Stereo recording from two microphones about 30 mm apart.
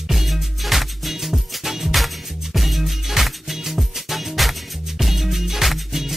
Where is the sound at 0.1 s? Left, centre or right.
Centre.